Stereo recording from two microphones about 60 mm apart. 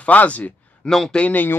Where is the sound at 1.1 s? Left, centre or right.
Left.